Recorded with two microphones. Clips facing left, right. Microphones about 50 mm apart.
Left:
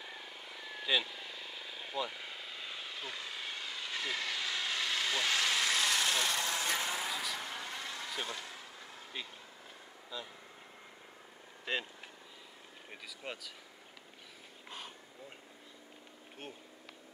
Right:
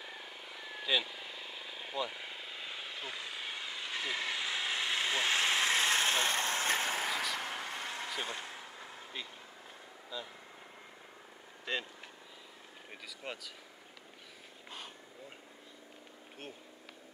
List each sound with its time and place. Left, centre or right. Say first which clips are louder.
0.0 s vehicle: right 1 dB; centre; by 9.0 s right
10.1 s speech: right 1 dB; centre
11.7 s speech: even; centre
13.2 s speech: right 1 dB; centre
14.7 s vehicle: even; centre